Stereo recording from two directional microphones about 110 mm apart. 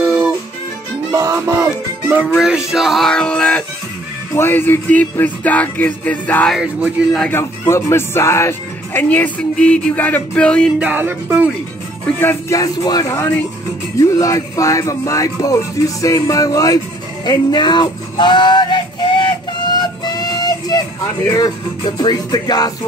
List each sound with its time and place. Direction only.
0.0 s music: 20° right (ahead or behind)
1.1 s music: 30° right (ahead or behind)
2.2 s speech: 5° left (ahead or behind)
2.7 s music: centre (ahead or behind)
10.8 s music: 15° right (ahead or behind)
12.2 s music: 20° left (ahead or behind)
12.5 s speech: 35° left (ahead or behind)
16.0 s music: 30° left (ahead or behind)
21.3 s speech: 35° left (ahead or behind)